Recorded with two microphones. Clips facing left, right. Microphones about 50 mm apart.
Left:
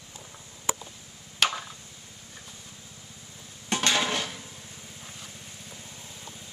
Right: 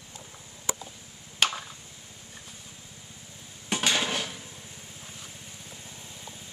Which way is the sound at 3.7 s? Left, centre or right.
Centre.